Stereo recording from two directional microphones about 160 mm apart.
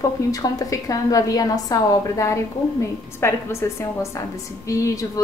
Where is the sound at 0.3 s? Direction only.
20° left (ahead or behind).